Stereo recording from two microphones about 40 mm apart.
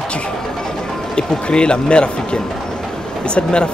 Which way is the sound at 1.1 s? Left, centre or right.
Left.